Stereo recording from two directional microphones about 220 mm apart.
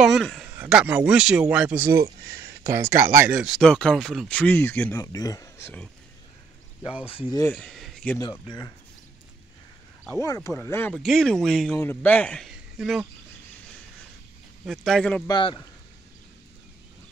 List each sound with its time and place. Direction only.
0.0 s a sound: centre (ahead or behind)
0.6 s speech: 5° right (ahead or behind)
2.3 s a sound: 45° right (ahead or behind)
2.7 s speech: 15° right (ahead or behind); by 5.9 s 10° left (ahead or behind)
7.5 s a sound: centre (ahead or behind)
8.2 s speech: 20° left (ahead or behind)
10.2 s speech: 15° left (ahead or behind)
14.7 s speech: centre (ahead or behind)
15.2 s a man's voice: 20° left (ahead or behind)